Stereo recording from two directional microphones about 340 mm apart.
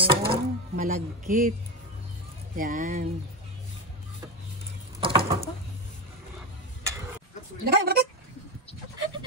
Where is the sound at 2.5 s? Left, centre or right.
Right.